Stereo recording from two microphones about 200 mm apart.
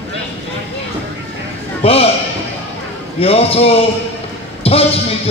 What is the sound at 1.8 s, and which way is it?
Basketball bounce, 30° left (ahead or behind).